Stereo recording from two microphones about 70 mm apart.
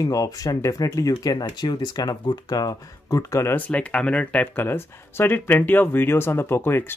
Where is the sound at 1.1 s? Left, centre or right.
Left.